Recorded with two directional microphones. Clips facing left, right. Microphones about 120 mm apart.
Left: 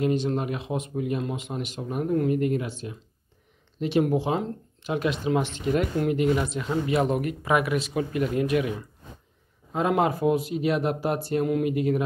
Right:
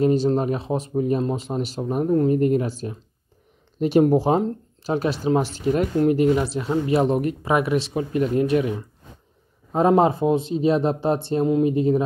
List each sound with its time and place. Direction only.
0.0 s speech: 35° right (ahead or behind)